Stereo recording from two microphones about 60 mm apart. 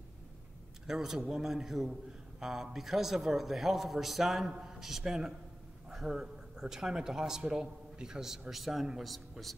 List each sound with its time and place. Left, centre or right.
0.8 s a man's voice: centre